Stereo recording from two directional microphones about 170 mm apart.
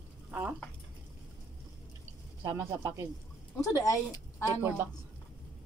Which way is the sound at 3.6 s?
20° left (ahead or behind).